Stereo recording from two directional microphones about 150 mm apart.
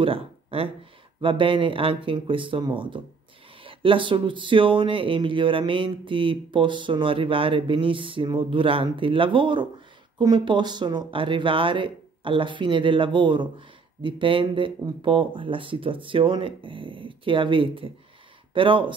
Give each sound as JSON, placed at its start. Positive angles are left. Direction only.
{"t": 0.0, "sound": "speech", "side_deg": -40}